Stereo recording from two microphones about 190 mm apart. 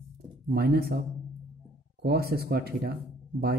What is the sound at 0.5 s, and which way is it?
Speech, 55° right (ahead or behind).